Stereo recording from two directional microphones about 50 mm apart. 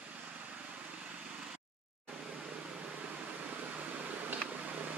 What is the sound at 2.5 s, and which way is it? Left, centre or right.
Air conditioning, right.